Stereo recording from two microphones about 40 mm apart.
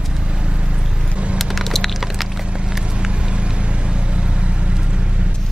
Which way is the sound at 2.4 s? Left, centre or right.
Right.